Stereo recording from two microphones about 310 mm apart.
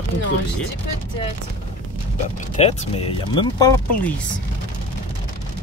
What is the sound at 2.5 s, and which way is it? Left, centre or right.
Speech, centre.